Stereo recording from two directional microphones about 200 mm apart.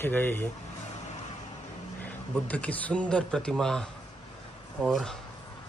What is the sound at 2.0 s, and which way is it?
Speech, 5° left (ahead or behind).